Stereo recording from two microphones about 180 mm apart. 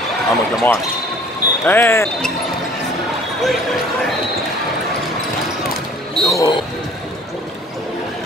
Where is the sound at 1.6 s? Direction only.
10° left (ahead or behind).